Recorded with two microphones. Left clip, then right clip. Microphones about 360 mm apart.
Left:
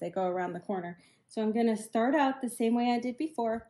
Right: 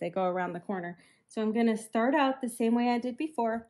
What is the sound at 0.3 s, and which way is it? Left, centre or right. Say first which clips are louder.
A woman's voice: right 1 dB; centre.